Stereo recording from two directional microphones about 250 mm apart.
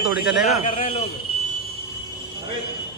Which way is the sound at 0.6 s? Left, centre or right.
Left.